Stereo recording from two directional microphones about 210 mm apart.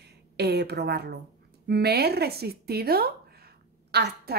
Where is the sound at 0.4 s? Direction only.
50° right (ahead or behind).